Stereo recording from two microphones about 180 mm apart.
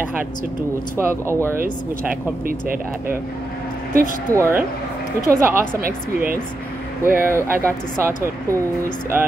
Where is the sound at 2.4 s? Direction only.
50° right (ahead or behind).